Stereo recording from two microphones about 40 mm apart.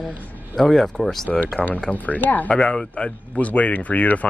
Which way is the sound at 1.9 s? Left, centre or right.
Left.